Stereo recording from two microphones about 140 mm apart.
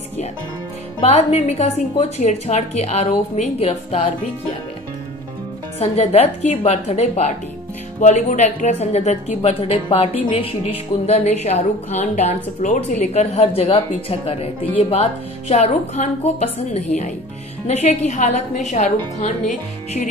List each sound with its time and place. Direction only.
1.0 s a woman's voice: 50° left (ahead or behind)
5.8 s a woman's voice: 50° left (ahead or behind)